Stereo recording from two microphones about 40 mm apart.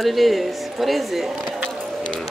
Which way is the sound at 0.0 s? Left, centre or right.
Centre.